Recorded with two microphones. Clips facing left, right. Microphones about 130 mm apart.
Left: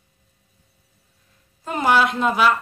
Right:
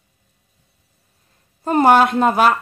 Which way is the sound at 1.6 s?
45° right (ahead or behind).